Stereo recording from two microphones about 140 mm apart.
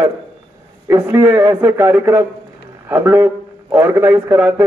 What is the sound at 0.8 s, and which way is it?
Speech, 15° right (ahead or behind).